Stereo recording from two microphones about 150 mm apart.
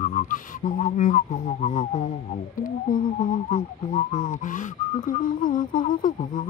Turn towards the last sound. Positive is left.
turn(degrees=60)  # may be behind; listen again after turning